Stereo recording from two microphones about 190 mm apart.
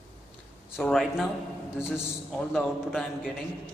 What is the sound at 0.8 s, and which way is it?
A man's voice, centre (ahead or behind).